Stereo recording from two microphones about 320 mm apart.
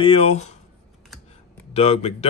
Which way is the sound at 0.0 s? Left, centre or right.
Centre.